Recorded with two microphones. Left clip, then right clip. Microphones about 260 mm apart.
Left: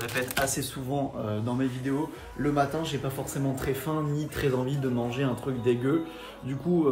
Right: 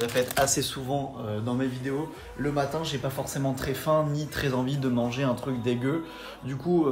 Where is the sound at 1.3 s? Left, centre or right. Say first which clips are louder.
Even; centre.